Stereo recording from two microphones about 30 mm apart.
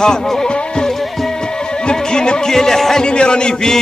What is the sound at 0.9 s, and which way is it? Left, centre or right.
Music, centre.